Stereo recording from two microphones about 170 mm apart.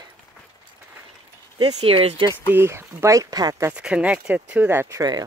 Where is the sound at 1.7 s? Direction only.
35° right (ahead or behind).